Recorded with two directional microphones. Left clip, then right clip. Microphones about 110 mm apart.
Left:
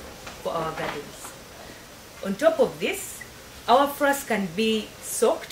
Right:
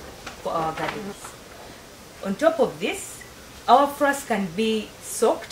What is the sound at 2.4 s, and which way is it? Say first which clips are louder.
Speech: even; centre (ahead or behind).